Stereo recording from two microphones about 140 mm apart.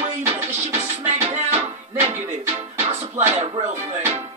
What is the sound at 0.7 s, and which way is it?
Music, 55° right (ahead or behind).